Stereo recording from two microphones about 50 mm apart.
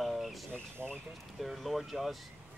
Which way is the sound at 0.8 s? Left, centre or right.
Right.